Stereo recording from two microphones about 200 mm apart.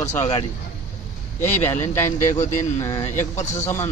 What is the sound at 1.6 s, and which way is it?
Speech, 10° left (ahead or behind).